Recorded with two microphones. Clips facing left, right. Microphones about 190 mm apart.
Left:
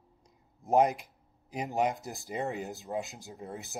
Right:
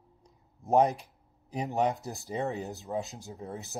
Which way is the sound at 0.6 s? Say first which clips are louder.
Right 1 dB; 15° left (ahead or behind).